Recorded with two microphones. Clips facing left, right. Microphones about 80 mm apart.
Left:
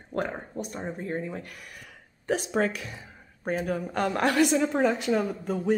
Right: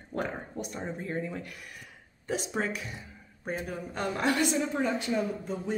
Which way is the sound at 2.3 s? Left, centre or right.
Left.